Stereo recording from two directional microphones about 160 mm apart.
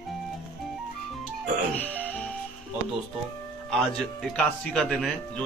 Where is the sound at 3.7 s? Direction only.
5° left (ahead or behind).